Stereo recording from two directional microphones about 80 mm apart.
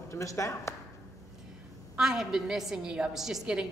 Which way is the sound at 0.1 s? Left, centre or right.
Left.